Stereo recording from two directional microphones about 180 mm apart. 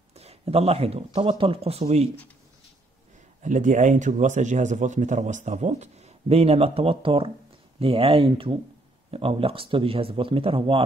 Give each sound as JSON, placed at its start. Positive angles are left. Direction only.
{"t": 0.1, "sound": "speech", "side_deg": -35}
{"t": 3.4, "sound": "speech", "side_deg": -45}